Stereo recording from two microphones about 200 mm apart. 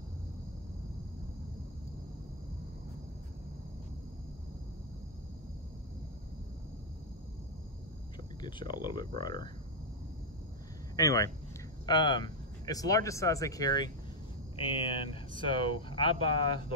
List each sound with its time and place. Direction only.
8.4 s speech: 25° left (ahead or behind)
11.0 s speech: 15° left (ahead or behind)